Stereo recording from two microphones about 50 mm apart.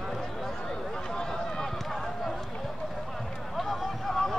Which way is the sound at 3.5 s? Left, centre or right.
Centre.